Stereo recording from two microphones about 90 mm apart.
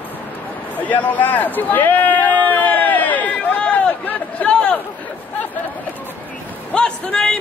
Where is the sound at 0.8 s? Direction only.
20° left (ahead or behind).